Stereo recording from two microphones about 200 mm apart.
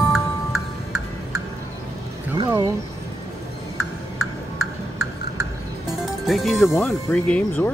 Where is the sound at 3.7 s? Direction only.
90° left.